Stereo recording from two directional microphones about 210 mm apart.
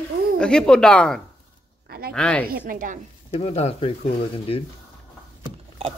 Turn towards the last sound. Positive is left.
turn(degrees=-25)  # may be behind; listen again after turning